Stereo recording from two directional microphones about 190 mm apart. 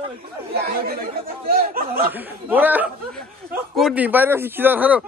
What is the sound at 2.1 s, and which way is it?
Speech, 10° right (ahead or behind).